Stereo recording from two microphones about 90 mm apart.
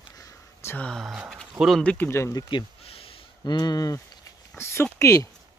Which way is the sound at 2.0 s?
30° left (ahead or behind).